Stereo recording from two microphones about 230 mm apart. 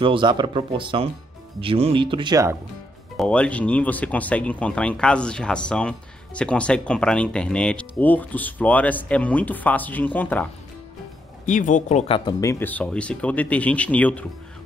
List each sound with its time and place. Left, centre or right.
0.0 s speech: right
3.2 s speech: centre
11.4 s speech: left; by 14.2 s centre